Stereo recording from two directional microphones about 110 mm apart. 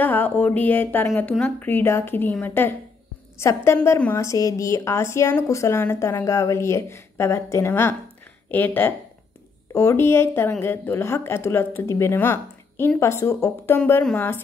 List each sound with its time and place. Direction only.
0.0 s speech: 15° left (ahead or behind)